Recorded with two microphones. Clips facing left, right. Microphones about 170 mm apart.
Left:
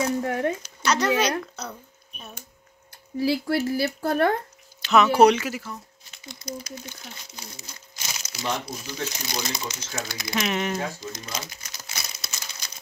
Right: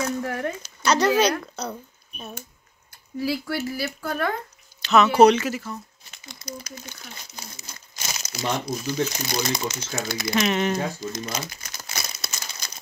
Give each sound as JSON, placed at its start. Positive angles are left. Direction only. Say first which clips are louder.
{"t": 0.2, "sound": "speech", "louder": "left 2 dB", "side_deg": 20}
{"t": 0.6, "sound": "speech", "louder": "right 3 dB", "side_deg": -30}
{"t": 3.2, "sound": "speech", "louder": "left 3 dB", "side_deg": 30}
{"t": 4.8, "sound": "speech", "louder": "right 1 dB", "side_deg": 10}
{"t": 6.2, "sound": "speech", "louder": "left 2 dB", "side_deg": -50}
{"t": 10.3, "sound": "speech", "louder": "right 3 dB", "side_deg": 5}
{"t": 11.0, "sound": "crumpling", "louder": "right 4 dB", "side_deg": -50}